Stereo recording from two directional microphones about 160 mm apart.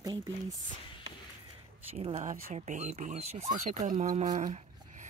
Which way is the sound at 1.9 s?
40° right (ahead or behind).